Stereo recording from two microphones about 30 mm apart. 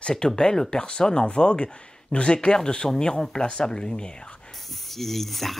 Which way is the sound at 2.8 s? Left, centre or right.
Centre.